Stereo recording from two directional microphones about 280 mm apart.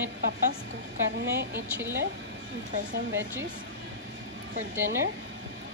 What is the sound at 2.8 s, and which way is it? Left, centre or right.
Speech, right.